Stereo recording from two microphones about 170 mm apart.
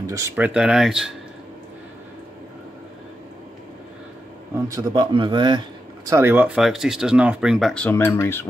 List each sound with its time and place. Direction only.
0.0 s a sound: 20° right (ahead or behind)
0.4 s speech: 5° right (ahead or behind)
4.6 s speech: 20° right (ahead or behind)
6.0 s speech: 15° right (ahead or behind); by 8.5 s 15° left (ahead or behind)